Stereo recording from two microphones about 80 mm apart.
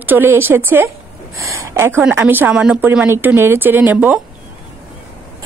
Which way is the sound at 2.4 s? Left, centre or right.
Centre.